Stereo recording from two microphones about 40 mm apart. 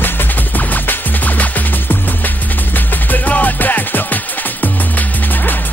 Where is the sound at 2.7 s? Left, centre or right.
Left.